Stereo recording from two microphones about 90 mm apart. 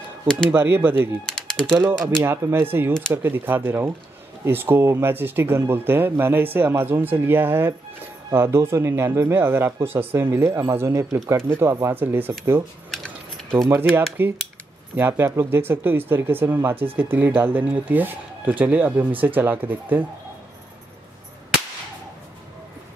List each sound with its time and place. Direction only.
0.5 s speech: 25° right (ahead or behind)
1.2 s a sound: 5° left (ahead or behind)
1.8 s speech: 25° right (ahead or behind)
13.7 s speech: 25° right (ahead or behind)